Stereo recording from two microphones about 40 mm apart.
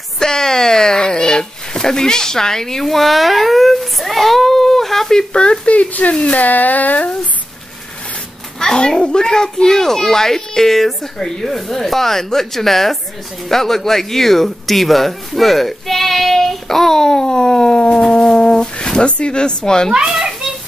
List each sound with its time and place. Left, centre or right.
0.2 s a sound: centre
5.3 s speech: left
5.7 s speech: left
6.3 s a sound: left
8.5 s speech: centre
19.9 s children playing: centre